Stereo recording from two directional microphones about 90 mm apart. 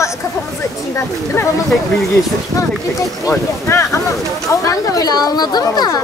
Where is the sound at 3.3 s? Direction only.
30° left (ahead or behind); by 5.9 s 50° left (ahead or behind).